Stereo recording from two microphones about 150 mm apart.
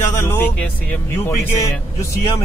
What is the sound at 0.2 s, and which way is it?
A man's voice, 10° left (ahead or behind).